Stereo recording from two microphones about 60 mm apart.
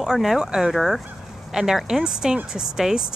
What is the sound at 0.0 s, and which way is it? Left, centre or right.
Speech, centre.